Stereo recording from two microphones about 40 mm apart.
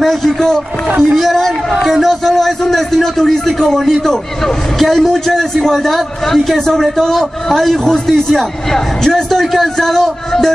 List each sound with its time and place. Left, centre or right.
0.0 s a man's voice: centre
1.0 s a man's voice: centre